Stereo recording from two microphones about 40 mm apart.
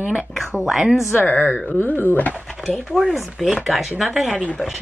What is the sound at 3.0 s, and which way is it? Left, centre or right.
Speech, centre.